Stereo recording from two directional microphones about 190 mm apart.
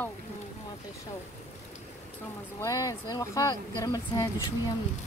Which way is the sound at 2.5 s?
15° left (ahead or behind).